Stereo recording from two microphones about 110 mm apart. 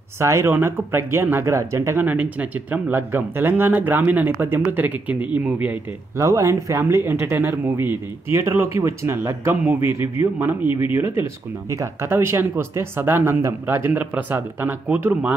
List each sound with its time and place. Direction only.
0.2 s speech: 25° right (ahead or behind)
6.1 s speech: 30° right (ahead or behind)